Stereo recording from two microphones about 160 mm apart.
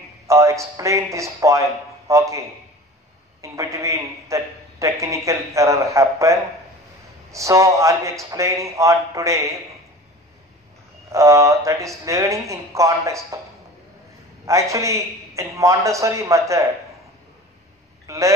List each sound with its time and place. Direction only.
0.3 s a man's voice: 20° right (ahead or behind)
11.1 s a man's voice: 20° right (ahead or behind)
14.4 s a man's voice: 20° right (ahead or behind)
18.0 s a sound: 20° right (ahead or behind)